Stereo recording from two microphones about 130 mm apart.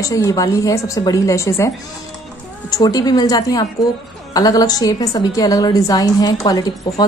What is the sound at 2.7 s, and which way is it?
A woman's voice, 30° left (ahead or behind).